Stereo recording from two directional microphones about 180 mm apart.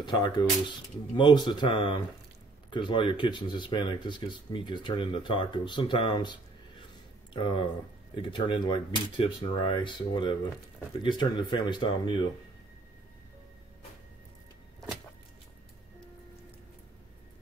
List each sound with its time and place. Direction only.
0.0 s speech: 25° left (ahead or behind)
7.3 s speech: 25° left (ahead or behind)